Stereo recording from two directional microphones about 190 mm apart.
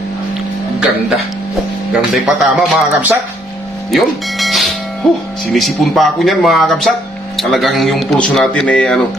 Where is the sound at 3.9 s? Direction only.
Centre (ahead or behind).